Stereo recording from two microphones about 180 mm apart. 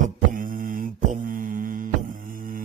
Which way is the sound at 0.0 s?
50° right (ahead or behind).